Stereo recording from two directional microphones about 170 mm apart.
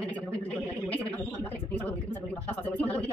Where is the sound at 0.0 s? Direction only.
10° left (ahead or behind).